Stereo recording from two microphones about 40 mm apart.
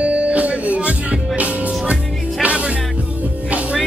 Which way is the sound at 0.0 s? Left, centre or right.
Right.